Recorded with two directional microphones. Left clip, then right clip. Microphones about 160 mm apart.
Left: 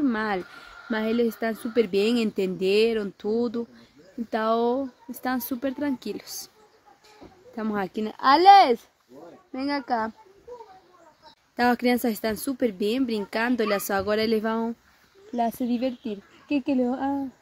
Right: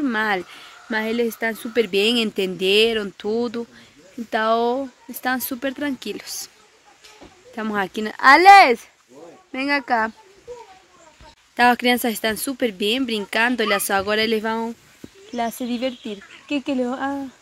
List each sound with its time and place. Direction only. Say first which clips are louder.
0.0 s speech: right 5 dB; centre (ahead or behind)
7.5 s speech: right 5 dB; 5° right (ahead or behind)
11.5 s speech: right 6 dB; 5° right (ahead or behind)